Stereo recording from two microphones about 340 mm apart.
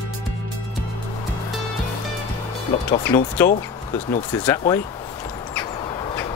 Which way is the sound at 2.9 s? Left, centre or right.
Centre.